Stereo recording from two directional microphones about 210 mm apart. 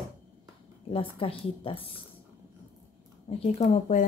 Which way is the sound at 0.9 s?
25° left (ahead or behind).